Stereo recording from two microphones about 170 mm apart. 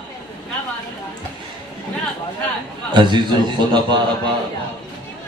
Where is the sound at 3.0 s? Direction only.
25° right (ahead or behind).